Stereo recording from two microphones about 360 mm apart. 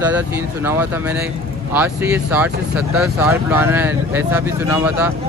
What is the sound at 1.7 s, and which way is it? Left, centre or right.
Speech, centre.